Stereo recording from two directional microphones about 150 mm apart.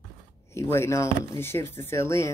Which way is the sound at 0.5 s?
15° left (ahead or behind).